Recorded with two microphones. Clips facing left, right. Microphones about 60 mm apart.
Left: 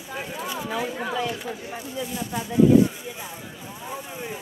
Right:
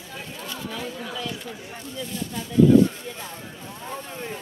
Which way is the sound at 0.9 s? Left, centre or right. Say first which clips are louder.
Left 6 dB; left.